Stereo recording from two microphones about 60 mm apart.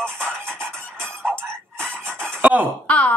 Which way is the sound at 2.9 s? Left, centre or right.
Left.